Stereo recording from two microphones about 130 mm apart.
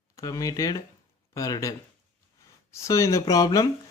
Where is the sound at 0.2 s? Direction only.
25° left (ahead or behind).